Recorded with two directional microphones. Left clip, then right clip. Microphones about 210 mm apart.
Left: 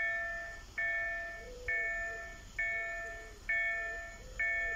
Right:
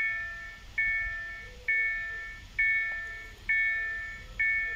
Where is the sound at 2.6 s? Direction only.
55° left (ahead or behind).